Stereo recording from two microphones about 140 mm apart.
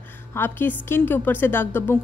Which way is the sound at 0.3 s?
15° left (ahead or behind).